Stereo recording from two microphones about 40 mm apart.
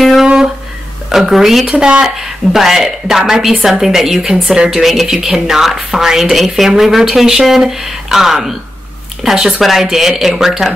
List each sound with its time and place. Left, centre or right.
0.2 s a sound: centre
1.1 s speech: centre
1.8 s speech: right
2.0 s a woman's voice: centre
4.8 s a woman's voice: centre